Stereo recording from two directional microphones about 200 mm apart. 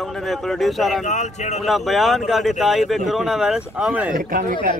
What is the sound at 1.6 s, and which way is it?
Speech, centre (ahead or behind).